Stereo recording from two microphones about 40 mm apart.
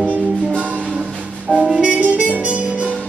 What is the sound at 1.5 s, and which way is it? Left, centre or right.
Music, right.